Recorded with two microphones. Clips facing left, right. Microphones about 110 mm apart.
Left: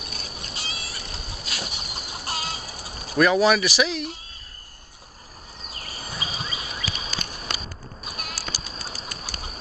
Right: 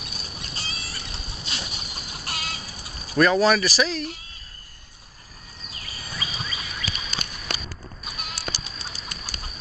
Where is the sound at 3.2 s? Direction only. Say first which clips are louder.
Even; 10° left (ahead or behind).